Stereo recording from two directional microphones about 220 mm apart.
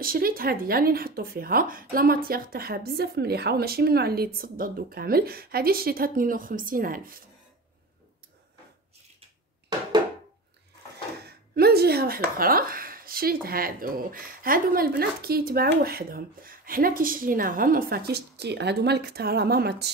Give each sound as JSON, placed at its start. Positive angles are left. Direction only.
{"t": 0.0, "sound": "speech", "side_deg": -40}
{"t": 11.2, "sound": "speech", "side_deg": -45}